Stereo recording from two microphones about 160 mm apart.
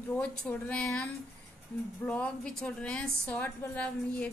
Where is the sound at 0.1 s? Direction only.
10° left (ahead or behind).